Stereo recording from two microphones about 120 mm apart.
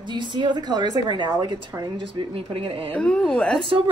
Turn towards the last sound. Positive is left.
turn(degrees=-50)  # may be behind; listen again after turning